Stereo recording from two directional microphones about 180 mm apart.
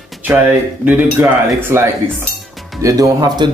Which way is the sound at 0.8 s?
10° right (ahead or behind).